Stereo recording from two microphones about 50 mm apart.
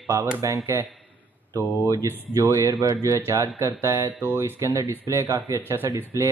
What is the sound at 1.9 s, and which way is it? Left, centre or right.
Speech, right.